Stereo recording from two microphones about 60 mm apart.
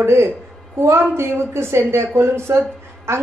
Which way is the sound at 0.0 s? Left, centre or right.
Right.